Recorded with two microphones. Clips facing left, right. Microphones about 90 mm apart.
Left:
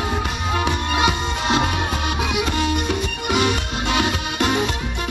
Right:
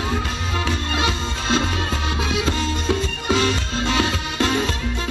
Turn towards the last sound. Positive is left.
turn(degrees=20)  # may be behind; listen again after turning